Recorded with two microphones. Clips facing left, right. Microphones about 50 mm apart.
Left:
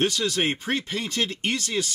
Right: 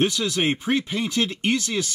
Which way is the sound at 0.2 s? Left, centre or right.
Right.